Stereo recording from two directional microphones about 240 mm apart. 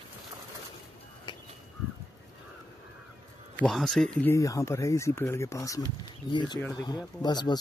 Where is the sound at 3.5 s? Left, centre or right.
Centre.